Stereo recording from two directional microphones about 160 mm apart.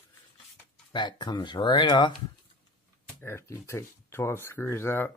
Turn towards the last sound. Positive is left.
turn(degrees=15)  # may be behind; listen again after turning